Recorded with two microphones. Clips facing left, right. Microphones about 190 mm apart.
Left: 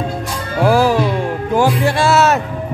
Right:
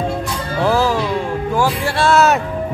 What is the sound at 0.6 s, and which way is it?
Music, 15° left (ahead or behind).